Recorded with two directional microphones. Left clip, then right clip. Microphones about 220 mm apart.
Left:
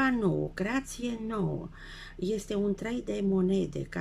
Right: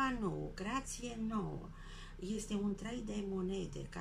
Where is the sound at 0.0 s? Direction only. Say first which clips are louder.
Left 10 dB; 40° left (ahead or behind).